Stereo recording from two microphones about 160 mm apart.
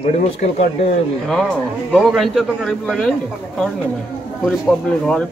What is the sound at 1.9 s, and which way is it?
Speech, centre (ahead or behind).